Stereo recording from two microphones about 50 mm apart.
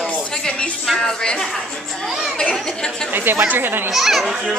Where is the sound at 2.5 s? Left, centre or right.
Centre.